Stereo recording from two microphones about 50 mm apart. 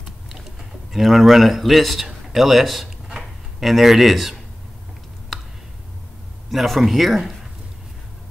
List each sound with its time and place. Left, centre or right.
0.9 s speech: centre
2.0 s a sound: centre
3.5 s speech: centre
6.5 s speech: centre